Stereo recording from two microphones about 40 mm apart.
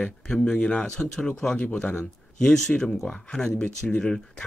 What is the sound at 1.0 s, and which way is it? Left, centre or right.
Speech, centre.